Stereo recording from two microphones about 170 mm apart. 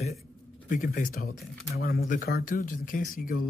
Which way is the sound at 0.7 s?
50° left (ahead or behind).